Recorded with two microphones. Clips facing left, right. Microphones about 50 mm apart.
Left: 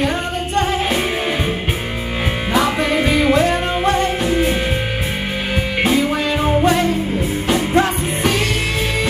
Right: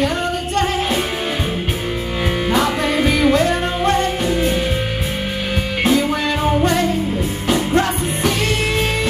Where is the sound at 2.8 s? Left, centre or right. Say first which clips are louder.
Even; left.